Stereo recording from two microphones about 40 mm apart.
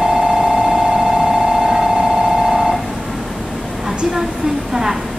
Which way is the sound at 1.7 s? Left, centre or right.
Centre.